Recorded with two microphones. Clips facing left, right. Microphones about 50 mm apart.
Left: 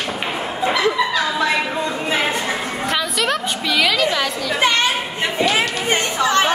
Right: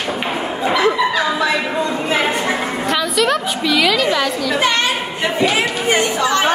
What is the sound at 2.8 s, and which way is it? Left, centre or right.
A woman's voice, centre.